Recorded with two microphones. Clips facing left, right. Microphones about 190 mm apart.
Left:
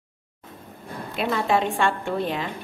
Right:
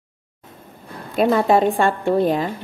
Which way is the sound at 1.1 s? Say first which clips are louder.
Right 7 dB; 40° right (ahead or behind).